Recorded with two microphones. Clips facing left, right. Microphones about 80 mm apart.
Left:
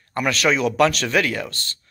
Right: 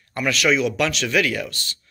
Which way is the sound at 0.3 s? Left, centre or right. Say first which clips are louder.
Even; left.